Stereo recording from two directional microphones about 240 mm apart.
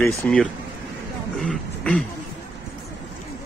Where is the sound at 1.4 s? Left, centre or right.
Centre.